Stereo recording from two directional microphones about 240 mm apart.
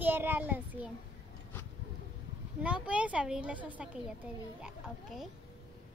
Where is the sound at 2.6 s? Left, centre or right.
Centre.